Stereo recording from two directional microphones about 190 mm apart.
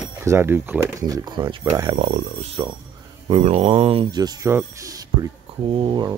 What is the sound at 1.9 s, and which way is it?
Speech, 40° right (ahead or behind).